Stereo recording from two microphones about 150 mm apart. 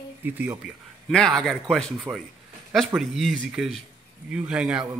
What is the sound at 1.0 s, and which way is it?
A man's voice, 5° left (ahead or behind).